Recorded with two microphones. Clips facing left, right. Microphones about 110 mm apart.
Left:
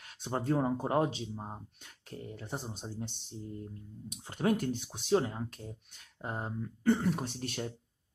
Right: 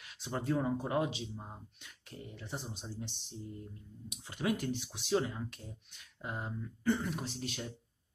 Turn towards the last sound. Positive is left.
turn(degrees=50)  # may be behind; listen again after turning